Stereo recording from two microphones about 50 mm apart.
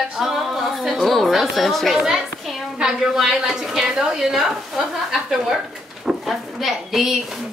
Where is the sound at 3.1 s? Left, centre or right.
Centre.